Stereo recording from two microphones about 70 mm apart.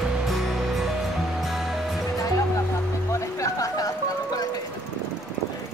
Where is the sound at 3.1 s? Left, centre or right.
Left.